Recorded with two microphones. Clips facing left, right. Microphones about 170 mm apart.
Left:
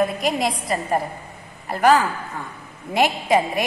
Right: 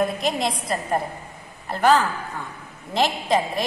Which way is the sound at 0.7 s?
5° left (ahead or behind).